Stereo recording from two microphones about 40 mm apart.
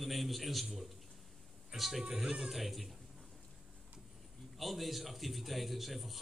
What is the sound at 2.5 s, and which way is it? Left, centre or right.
Speech, centre.